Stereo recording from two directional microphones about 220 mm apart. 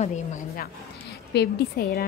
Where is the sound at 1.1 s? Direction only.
50° left (ahead or behind).